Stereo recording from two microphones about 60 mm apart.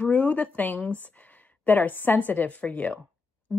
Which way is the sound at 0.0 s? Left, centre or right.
Left.